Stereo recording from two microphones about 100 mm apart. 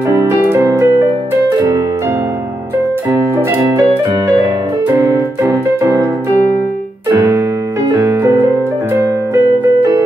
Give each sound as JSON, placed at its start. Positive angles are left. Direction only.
{"t": 0.5, "sound": "keyboard", "side_deg": -25}
{"t": 3.1, "sound": "keyboard", "side_deg": -25}
{"t": 4.9, "sound": "music", "side_deg": -35}
{"t": 7.1, "sound": "piano", "side_deg": -30}
{"t": 7.9, "sound": "music", "side_deg": -30}